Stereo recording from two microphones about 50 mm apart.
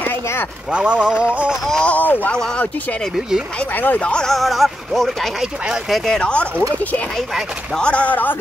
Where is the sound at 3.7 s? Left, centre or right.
Left.